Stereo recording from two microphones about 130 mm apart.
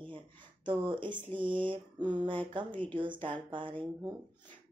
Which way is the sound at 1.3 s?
40° right (ahead or behind).